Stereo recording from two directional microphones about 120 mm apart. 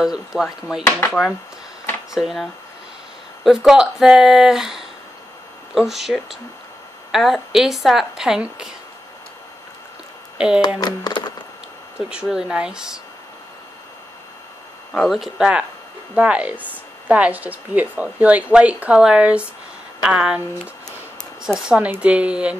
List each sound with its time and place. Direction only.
0.0 s a woman's voice: 5° right (ahead or behind)
2.1 s a woman's voice: centre (ahead or behind)
3.4 s a woman's voice: 5° right (ahead or behind)
10.3 s speech: 5° right (ahead or behind)
10.8 s a sound: 35° left (ahead or behind)
12.1 s a woman's voice: 5° right (ahead or behind)
14.9 s a woman's voice: 5° left (ahead or behind)